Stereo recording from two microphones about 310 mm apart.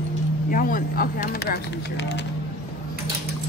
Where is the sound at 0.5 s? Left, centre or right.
Left.